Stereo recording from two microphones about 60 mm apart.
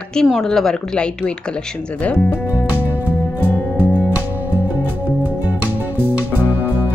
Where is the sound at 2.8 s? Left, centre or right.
Right.